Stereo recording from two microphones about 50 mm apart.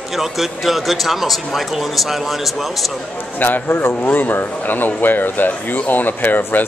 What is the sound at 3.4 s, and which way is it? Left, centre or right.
Speech, left.